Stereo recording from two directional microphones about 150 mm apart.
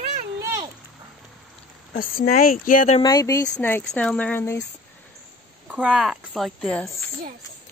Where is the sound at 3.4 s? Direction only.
10° left (ahead or behind).